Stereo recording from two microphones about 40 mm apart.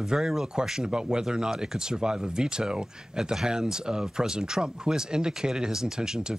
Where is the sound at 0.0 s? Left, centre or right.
Centre.